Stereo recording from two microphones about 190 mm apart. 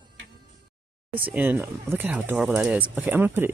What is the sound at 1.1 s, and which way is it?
Speech, 10° right (ahead or behind).